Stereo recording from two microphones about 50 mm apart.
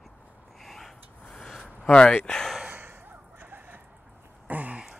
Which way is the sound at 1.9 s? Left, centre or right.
Left.